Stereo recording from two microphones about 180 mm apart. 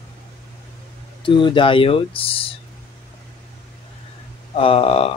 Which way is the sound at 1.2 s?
25° left (ahead or behind).